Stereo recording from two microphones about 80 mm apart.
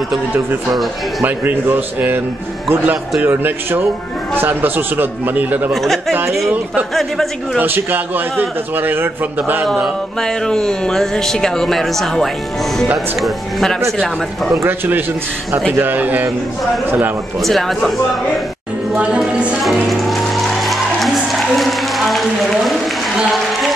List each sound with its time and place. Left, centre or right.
1.2 s a man's voice: right
5.7 s speech: centre
6.5 s a man's voice: centre
6.9 s speech: centre
7.5 s a man's voice: right
10.2 s speech: centre
14.6 s a man's voice: right
17.4 s speech: centre
18.9 s a woman's voice: centre
19.6 s music: centre